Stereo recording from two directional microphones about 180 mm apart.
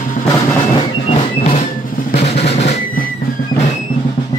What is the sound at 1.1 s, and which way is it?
Music, 35° left (ahead or behind).